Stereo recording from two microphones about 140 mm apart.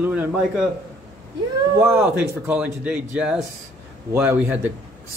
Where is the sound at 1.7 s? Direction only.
20° right (ahead or behind).